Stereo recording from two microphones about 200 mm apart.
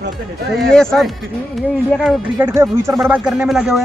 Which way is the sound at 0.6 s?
5° left (ahead or behind).